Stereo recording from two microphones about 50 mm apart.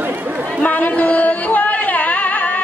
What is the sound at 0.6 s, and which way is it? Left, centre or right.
Music, left.